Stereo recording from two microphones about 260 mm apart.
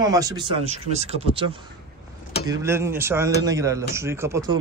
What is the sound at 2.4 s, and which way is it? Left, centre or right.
A man's voice, centre.